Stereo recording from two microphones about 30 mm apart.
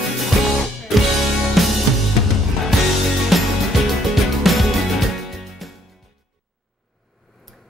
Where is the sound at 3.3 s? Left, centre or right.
Centre.